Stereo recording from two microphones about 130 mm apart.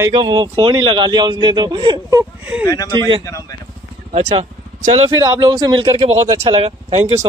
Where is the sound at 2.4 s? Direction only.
15° right (ahead or behind).